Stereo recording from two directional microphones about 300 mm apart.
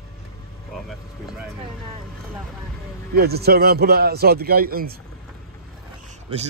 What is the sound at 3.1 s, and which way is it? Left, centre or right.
A man's voice, right.